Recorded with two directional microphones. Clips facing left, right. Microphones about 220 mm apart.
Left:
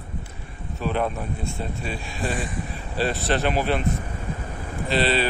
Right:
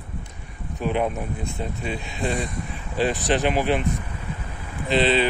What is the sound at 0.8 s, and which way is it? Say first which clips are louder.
Speech: right 1 dB; 15° right (ahead or behind).